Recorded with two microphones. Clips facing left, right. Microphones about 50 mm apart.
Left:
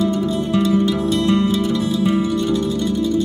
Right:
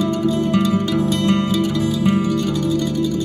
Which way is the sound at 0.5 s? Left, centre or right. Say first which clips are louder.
Left 1 dB; right.